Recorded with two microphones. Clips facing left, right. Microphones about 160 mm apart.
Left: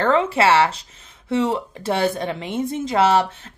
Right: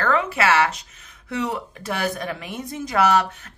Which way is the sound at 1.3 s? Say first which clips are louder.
Left 6 dB; 25° left (ahead or behind).